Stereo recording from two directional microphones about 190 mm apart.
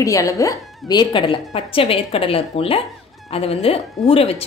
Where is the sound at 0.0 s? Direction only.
15° left (ahead or behind).